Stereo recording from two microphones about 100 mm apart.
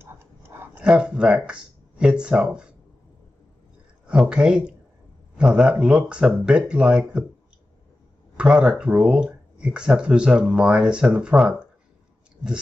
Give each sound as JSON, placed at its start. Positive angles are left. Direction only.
{"t": 0.0, "sound": "a sound", "side_deg": -25}
{"t": 0.7, "sound": "speech", "side_deg": -10}
{"t": 4.1, "sound": "speech", "side_deg": -10}
{"t": 8.4, "sound": "speech", "side_deg": -10}